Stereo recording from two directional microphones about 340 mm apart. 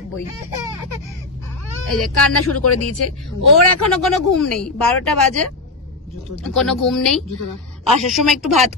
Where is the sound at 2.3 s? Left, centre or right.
Left.